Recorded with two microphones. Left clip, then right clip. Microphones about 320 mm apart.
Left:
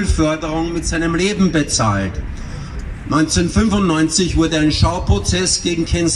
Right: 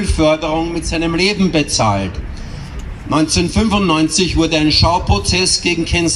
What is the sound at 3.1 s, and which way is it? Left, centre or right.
Speech, centre.